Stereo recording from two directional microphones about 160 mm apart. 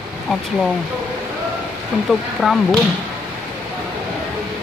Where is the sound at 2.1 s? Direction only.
Centre (ahead or behind).